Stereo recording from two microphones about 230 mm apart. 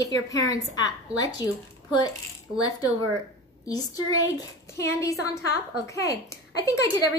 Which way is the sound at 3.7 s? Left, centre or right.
Centre.